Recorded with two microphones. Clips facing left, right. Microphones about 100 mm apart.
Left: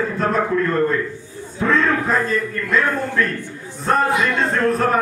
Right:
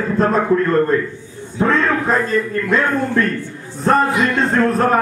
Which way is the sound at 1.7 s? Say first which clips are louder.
Even; centre (ahead or behind).